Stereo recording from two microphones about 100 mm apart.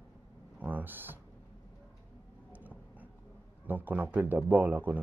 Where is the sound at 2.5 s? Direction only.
15° right (ahead or behind).